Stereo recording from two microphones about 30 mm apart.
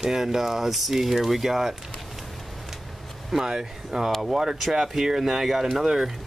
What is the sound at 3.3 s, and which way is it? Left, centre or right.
Speech, centre.